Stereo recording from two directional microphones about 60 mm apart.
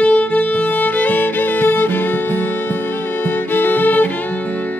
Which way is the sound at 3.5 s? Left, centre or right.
Left.